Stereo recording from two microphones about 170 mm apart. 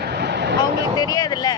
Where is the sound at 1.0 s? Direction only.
20° left (ahead or behind).